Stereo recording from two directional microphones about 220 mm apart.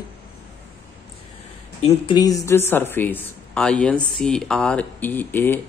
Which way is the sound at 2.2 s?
15° left (ahead or behind).